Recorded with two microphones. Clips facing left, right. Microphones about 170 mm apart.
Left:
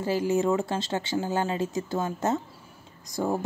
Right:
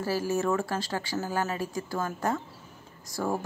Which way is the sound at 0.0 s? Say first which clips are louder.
Left 3 dB; 20° left (ahead or behind).